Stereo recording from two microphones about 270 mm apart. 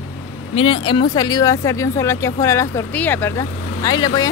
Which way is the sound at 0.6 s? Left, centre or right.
Centre.